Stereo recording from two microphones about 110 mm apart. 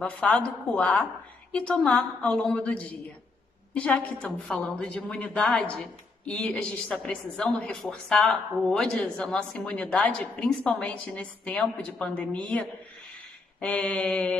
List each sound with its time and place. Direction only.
0.0 s a woman's voice: 10° left (ahead or behind)